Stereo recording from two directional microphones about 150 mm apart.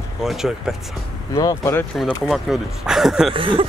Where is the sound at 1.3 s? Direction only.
20° left (ahead or behind).